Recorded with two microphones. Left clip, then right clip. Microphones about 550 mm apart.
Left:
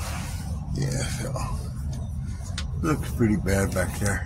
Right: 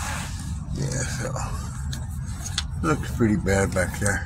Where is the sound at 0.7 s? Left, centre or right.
Left.